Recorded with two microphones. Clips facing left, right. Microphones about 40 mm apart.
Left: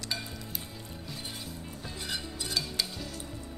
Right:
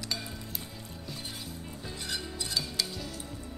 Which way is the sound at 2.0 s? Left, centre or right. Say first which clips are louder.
Even; centre.